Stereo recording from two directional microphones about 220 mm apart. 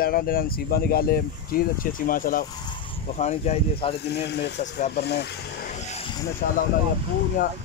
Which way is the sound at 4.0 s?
50° left (ahead or behind).